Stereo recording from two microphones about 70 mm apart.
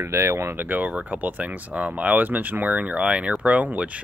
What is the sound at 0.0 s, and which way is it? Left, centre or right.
Speech, right.